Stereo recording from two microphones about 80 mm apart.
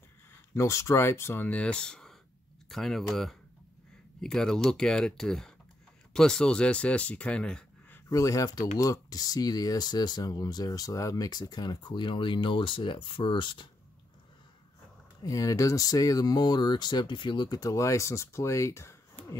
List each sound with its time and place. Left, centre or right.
0.6 s speech: left; by 7.6 s centre
8.1 s speech: left
15.2 s speech: left
17.6 s speech: left